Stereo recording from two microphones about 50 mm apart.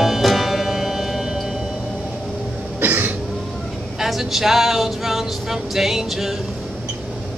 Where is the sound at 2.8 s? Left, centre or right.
Right.